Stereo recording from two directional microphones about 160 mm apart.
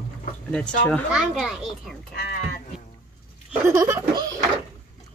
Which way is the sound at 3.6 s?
20° right (ahead or behind).